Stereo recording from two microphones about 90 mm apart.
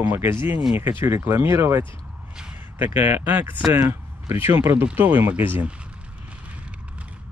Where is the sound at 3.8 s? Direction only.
30° right (ahead or behind).